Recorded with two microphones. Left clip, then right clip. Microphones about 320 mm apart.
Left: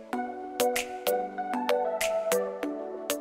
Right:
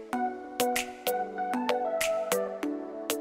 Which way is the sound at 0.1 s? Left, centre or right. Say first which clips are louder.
Right 2 dB; centre.